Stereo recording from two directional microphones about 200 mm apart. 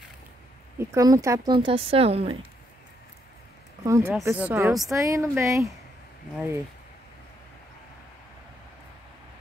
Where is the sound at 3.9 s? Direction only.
15° right (ahead or behind).